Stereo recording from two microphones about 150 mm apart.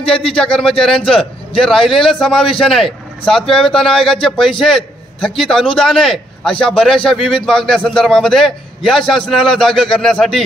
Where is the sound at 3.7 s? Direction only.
5° left (ahead or behind).